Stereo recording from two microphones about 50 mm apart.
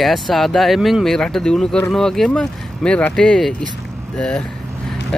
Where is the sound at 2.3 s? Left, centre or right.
Left.